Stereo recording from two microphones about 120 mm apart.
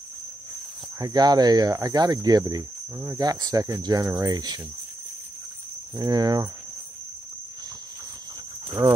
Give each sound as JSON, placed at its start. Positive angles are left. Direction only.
{"t": 0.9, "sound": "speech", "side_deg": -30}
{"t": 5.9, "sound": "speech", "side_deg": -35}
{"t": 8.8, "sound": "speech", "side_deg": -25}